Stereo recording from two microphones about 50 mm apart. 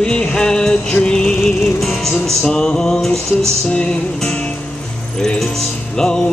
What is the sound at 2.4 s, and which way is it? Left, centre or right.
Music, centre.